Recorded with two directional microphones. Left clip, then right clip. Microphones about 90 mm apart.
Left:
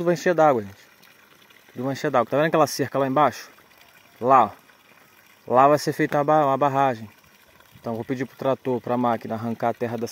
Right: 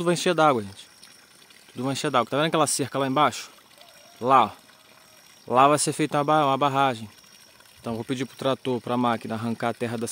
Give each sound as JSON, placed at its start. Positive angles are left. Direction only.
{"t": 0.0, "sound": "speech", "side_deg": -15}
{"t": 1.8, "sound": "speech", "side_deg": -5}
{"t": 2.2, "sound": "speech", "side_deg": 5}
{"t": 9.6, "sound": "speech", "side_deg": -15}